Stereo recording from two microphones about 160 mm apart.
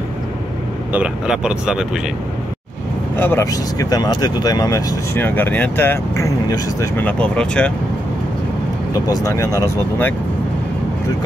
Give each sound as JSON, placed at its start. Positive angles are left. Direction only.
{"t": 0.9, "sound": "speech", "side_deg": -5}
{"t": 3.2, "sound": "speech", "side_deg": 15}
{"t": 9.0, "sound": "speech", "side_deg": 20}